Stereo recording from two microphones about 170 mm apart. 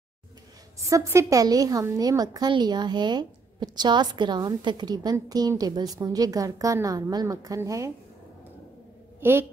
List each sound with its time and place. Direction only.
0.7 s a woman's voice: 20° right (ahead or behind)
9.2 s a woman's voice: 15° right (ahead or behind)